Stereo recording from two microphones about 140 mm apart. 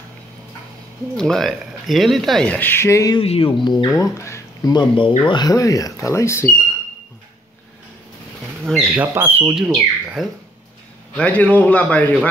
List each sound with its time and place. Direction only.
1.1 s speech: 5° left (ahead or behind); by 3.2 s 20° left (ahead or behind)
3.2 s speech: 40° left (ahead or behind); by 4.7 s 20° left (ahead or behind)
4.7 s speech: 35° left (ahead or behind); by 6.5 s 20° left (ahead or behind)
8.6 s speech: centre (ahead or behind)
11.1 s a man's voice: 10° left (ahead or behind)